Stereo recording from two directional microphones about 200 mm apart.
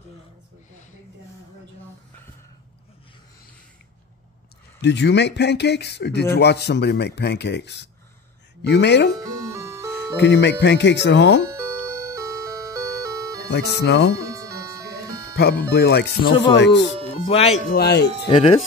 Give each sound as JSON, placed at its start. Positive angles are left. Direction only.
{"t": 4.8, "sound": "speech", "side_deg": 60}
{"t": 9.2, "sound": "music", "side_deg": -15}
{"t": 10.1, "sound": "speech", "side_deg": 60}
{"t": 12.2, "sound": "music", "side_deg": -15}
{"t": 13.5, "sound": "speech", "side_deg": 60}
{"t": 14.1, "sound": "music", "side_deg": -15}
{"t": 15.3, "sound": "speech", "side_deg": 55}
{"t": 16.3, "sound": "speech", "side_deg": 25}
{"t": 16.5, "sound": "speech", "side_deg": 60}
{"t": 17.1, "sound": "speech", "side_deg": 30}
{"t": 17.6, "sound": "speech", "side_deg": 55}